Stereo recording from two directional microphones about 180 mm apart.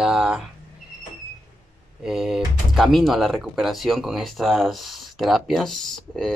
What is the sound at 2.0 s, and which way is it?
Speech, 5° right (ahead or behind).